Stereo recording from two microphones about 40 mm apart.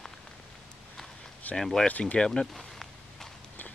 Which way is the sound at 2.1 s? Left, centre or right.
Centre.